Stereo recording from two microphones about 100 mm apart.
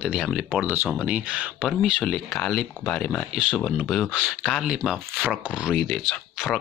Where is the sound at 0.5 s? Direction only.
15° right (ahead or behind); by 3.3 s 5° left (ahead or behind).